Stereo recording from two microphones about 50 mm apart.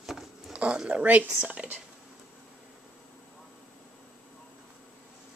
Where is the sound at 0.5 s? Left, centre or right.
Right.